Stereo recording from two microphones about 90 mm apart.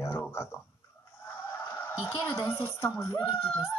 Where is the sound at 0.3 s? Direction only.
30° left (ahead or behind).